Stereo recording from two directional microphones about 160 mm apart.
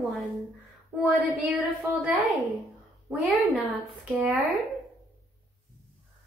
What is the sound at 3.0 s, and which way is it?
A woman's voice, centre (ahead or behind).